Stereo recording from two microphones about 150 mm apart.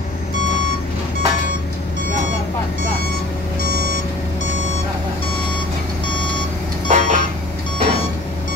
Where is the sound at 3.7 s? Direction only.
70° left (ahead or behind).